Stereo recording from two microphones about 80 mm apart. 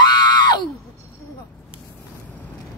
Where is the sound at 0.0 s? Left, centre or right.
Left.